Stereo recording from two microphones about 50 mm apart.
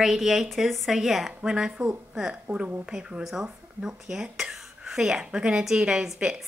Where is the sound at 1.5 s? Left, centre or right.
Right.